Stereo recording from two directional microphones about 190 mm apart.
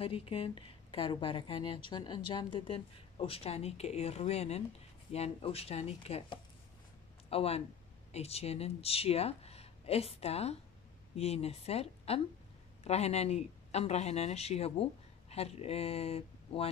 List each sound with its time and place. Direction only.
0.0 s speech: 30° left (ahead or behind)